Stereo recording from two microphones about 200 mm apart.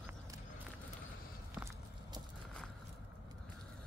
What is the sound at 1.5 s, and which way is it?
Walk, 15° right (ahead or behind).